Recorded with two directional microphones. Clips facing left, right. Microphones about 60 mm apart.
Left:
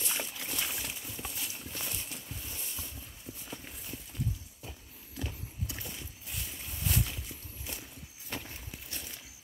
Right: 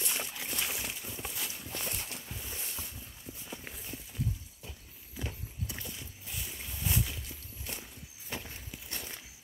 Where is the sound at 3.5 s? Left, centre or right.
Centre.